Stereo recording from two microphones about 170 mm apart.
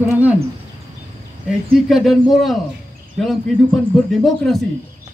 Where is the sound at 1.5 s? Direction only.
Centre (ahead or behind).